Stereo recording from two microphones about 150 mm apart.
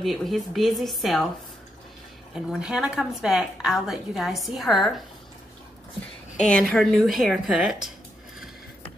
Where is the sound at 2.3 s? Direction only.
5° right (ahead or behind).